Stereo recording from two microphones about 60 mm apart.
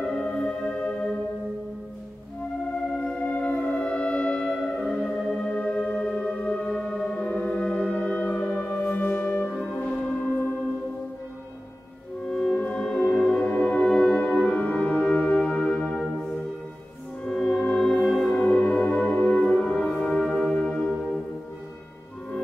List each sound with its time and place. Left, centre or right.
0.0 s music: centre
3.0 s music: centre
4.8 s music: centre
5.4 s music: centre
6.7 s music: centre; by 9.5 s left
9.8 s a sound: centre
12.3 s music: centre
13.4 s music: centre
17.2 s music: centre
18.3 s music: left
19.7 s music: centre